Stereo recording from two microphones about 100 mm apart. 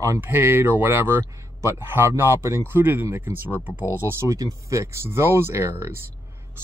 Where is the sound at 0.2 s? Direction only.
20° right (ahead or behind).